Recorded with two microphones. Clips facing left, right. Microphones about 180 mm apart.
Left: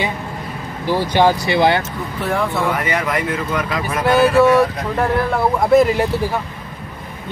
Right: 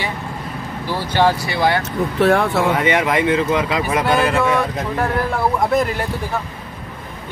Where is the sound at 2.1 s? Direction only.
75° right (ahead or behind).